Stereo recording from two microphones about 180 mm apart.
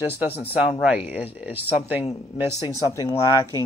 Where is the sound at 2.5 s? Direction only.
20° left (ahead or behind).